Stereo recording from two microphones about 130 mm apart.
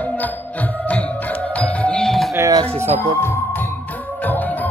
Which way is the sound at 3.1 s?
15° left (ahead or behind).